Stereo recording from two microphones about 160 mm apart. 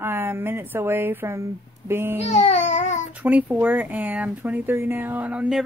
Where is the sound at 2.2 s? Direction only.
40° left (ahead or behind).